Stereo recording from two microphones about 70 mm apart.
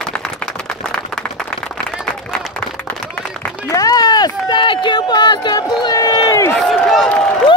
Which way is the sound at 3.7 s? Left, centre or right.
Left.